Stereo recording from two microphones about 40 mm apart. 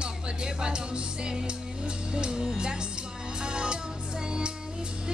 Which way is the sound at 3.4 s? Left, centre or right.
Right.